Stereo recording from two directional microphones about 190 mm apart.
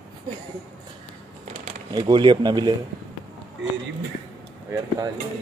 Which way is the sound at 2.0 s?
25° right (ahead or behind).